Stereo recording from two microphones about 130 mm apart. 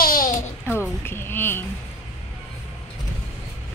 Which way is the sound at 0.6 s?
20° left (ahead or behind).